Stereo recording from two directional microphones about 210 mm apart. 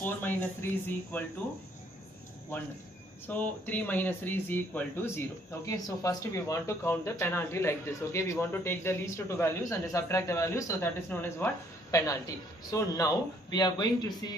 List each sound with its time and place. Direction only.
0.0 s speech: 10° left (ahead or behind)
3.3 s speech: 10° left (ahead or behind)